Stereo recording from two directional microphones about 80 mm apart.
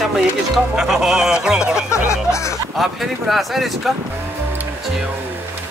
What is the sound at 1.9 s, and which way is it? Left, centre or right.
Music, left.